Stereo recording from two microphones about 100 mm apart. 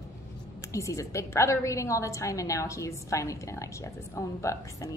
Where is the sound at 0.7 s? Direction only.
30° left (ahead or behind).